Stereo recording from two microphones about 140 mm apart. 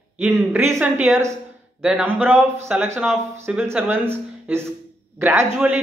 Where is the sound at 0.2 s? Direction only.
15° right (ahead or behind).